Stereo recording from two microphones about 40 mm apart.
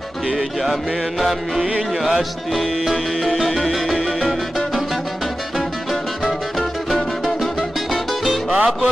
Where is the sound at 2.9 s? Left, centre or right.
Centre.